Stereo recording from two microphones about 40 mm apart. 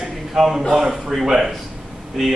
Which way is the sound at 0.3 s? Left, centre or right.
Centre.